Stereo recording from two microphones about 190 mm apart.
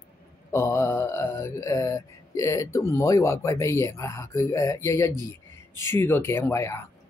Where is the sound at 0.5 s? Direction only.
15° left (ahead or behind).